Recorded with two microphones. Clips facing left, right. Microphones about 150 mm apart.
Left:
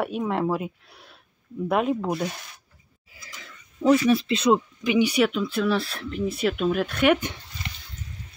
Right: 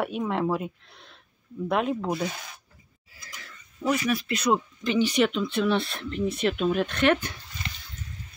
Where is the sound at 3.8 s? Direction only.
30° left (ahead or behind).